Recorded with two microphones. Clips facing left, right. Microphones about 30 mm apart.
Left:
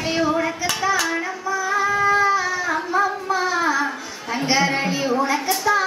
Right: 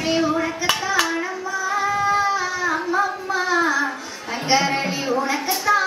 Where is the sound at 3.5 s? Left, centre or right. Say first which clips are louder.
Right 3 dB; centre.